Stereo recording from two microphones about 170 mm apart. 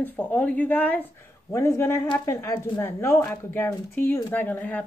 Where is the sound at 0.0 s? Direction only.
10° left (ahead or behind).